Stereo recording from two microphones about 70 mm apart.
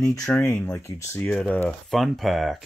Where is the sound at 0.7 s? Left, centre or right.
Left.